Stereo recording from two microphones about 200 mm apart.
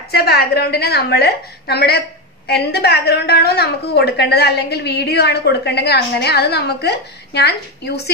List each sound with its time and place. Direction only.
0.1 s a woman's voice: 50° left (ahead or behind)